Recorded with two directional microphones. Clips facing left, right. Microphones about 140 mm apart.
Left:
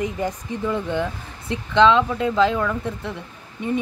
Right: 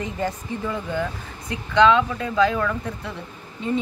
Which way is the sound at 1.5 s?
25° left (ahead or behind).